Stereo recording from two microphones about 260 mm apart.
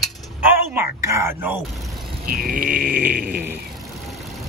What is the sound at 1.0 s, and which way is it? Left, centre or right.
Speech, centre.